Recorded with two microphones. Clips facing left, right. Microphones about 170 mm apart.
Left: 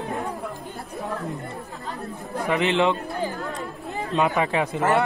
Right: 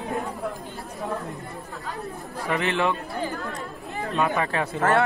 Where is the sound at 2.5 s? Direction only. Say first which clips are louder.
Left 3 dB; 20° left (ahead or behind).